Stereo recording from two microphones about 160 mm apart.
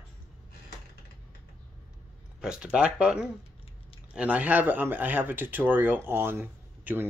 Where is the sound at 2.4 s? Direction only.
5° right (ahead or behind).